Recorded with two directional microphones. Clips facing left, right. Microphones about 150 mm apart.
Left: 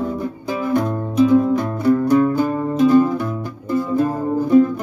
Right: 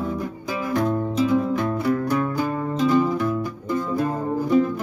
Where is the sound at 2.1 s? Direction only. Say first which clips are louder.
Left 7 dB; 15° left (ahead or behind).